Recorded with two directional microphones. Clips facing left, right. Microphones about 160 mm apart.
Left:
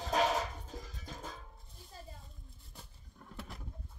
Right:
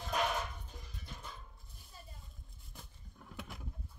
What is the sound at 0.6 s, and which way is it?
Music, 90° left.